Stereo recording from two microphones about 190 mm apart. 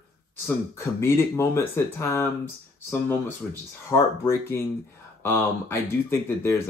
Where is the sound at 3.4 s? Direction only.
5° left (ahead or behind).